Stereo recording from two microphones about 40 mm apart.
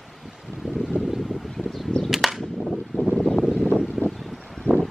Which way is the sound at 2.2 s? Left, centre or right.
Centre.